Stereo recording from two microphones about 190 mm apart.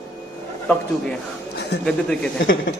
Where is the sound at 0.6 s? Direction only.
5° left (ahead or behind).